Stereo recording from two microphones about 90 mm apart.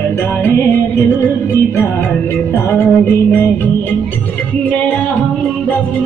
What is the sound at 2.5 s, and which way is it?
Music, 25° left (ahead or behind).